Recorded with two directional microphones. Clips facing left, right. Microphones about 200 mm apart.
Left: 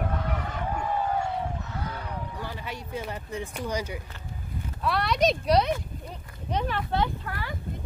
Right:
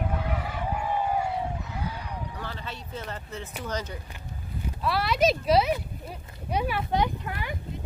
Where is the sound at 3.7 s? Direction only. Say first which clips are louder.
Left 1 dB; 10° left (ahead or behind).